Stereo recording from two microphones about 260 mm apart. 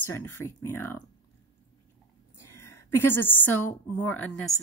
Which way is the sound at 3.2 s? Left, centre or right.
Centre.